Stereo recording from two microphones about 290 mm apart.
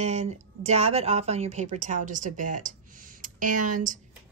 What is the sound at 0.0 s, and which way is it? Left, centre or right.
A woman's voice, right.